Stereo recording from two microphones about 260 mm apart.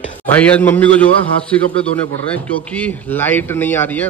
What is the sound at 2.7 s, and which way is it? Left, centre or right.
Speech, centre.